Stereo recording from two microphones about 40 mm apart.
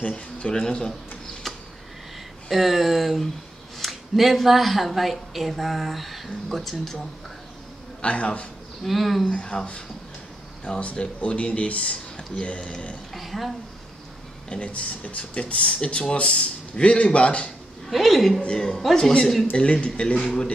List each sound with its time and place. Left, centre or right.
0.0 s speech: left
1.5 s a sound: centre
2.5 s speech: centre
8.0 s speech: left
8.8 s speech: centre
9.3 s speech: left
10.8 s speech: left
13.1 s speech: centre
14.5 s speech: left
17.8 s speech: centre
18.5 s speech: centre
19.5 s speech: left